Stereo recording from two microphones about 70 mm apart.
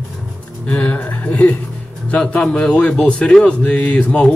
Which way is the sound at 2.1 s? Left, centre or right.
Centre.